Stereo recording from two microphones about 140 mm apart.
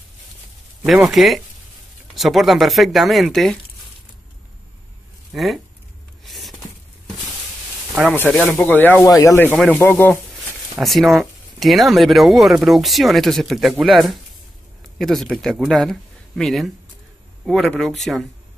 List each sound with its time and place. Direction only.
0.8 s speech: centre (ahead or behind)
5.3 s speech: centre (ahead or behind)
6.2 s a sound: centre (ahead or behind)
8.1 s speech: 10° left (ahead or behind)
10.8 s speech: centre (ahead or behind)